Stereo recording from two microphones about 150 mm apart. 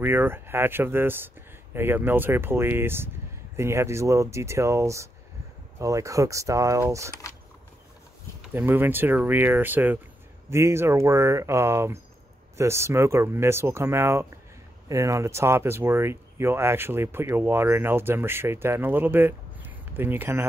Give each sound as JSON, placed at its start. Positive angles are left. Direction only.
{"t": 0.0, "sound": "speech", "side_deg": -15}
{"t": 8.4, "sound": "speech", "side_deg": -15}